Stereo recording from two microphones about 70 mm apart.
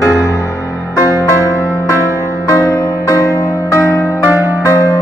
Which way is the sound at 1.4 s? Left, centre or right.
Left.